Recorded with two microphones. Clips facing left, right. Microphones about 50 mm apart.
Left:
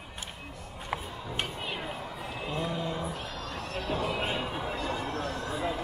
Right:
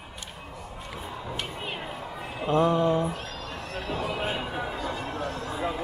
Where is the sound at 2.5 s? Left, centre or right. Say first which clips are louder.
Right 12 dB; right.